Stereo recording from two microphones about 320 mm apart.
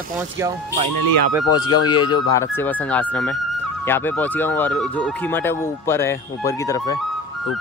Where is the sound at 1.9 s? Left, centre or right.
Centre.